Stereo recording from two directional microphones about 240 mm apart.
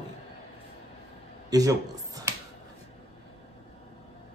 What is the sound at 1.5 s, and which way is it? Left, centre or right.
Speech, centre.